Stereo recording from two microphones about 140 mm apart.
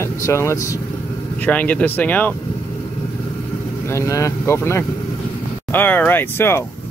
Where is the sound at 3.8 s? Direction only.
20° left (ahead or behind).